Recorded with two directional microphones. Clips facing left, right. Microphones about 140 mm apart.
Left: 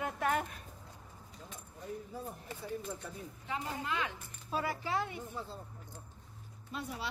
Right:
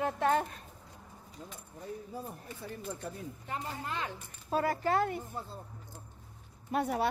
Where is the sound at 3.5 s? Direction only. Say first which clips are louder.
Left 1 dB; 40° right (ahead or behind).